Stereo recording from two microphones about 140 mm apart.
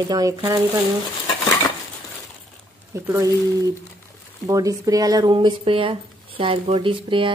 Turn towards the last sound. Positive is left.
turn(degrees=-35)  # may be behind; listen again after turning